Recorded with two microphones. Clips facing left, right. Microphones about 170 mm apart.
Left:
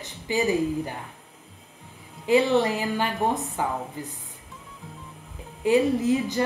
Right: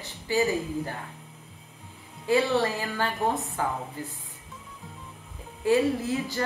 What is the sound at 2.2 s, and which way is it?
A woman's voice, 20° left (ahead or behind).